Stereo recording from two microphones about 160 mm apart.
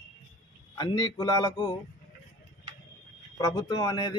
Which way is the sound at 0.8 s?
25° left (ahead or behind).